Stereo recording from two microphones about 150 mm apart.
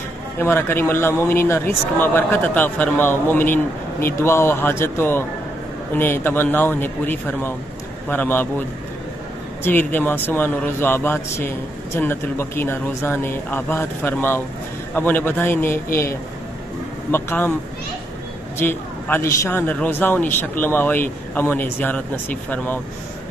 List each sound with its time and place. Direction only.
0.4 s a man's voice: 15° left (ahead or behind)
18.6 s a man's voice: 15° left (ahead or behind)